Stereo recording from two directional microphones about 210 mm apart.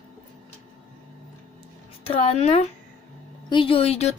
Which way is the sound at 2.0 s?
25° left (ahead or behind).